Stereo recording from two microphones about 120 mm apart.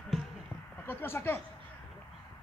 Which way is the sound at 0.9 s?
20° left (ahead or behind).